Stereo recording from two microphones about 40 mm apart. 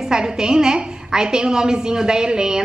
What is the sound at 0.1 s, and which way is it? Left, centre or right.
A woman's voice, centre.